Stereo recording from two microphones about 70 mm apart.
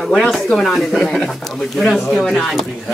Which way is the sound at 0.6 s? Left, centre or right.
Centre.